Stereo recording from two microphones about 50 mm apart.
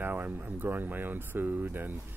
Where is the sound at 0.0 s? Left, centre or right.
Right.